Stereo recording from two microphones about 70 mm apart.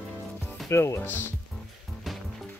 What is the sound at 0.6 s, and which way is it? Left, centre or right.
Speech, left.